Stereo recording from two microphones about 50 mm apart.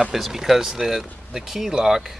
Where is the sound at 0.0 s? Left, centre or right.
Centre.